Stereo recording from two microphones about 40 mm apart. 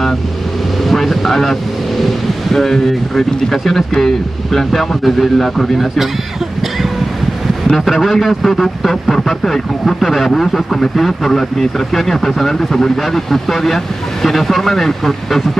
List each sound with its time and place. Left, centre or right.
0.8 s speech: centre
7.7 s a man's voice: centre